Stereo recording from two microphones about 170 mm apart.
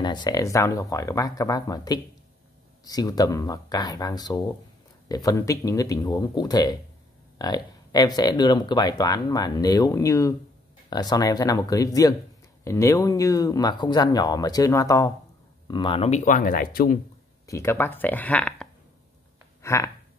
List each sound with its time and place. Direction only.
0.0 s speech: 25° left (ahead or behind)
16.3 s speech: 55° left (ahead or behind)
17.5 s speech: 15° left (ahead or behind)
19.6 s a sound: 15° left (ahead or behind)